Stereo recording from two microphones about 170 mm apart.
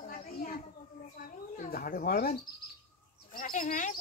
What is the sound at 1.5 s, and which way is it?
Speech, 55° left (ahead or behind).